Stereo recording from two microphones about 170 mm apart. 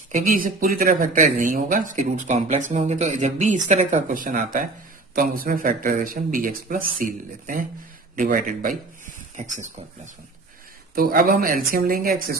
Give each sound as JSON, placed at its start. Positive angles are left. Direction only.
{"t": 0.1, "sound": "speech", "side_deg": -55}
{"t": 11.0, "sound": "speech", "side_deg": -60}